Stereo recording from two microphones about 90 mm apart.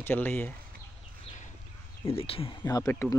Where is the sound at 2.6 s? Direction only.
40° left (ahead or behind).